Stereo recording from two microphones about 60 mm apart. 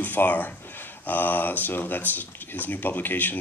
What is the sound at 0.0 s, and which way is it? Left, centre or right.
Speech, left.